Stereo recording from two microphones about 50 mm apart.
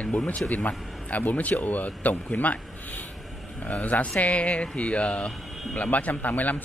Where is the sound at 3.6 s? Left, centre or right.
Left.